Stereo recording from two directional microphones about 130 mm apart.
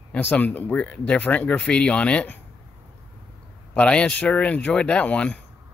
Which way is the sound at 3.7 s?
10° left (ahead or behind).